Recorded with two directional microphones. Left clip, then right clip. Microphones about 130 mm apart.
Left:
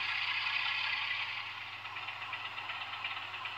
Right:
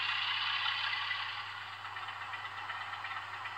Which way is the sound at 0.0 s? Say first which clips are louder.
Even; 55° left (ahead or behind).